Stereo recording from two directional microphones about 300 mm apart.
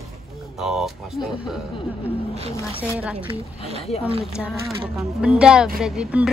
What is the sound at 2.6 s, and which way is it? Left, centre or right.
Speech, centre.